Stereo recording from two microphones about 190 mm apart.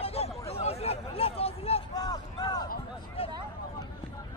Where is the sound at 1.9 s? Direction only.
20° left (ahead or behind).